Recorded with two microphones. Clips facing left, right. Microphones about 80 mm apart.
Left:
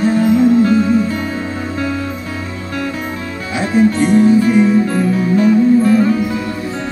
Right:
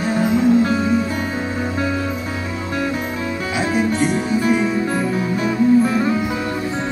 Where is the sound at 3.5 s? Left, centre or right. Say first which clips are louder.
Left 6 dB; centre.